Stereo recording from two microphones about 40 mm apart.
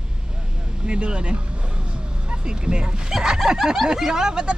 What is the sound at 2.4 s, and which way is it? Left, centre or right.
Speech, right.